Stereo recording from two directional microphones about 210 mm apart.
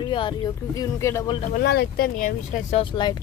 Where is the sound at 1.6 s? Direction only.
50° left (ahead or behind).